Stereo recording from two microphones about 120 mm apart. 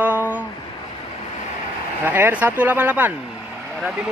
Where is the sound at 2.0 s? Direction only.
15° right (ahead or behind).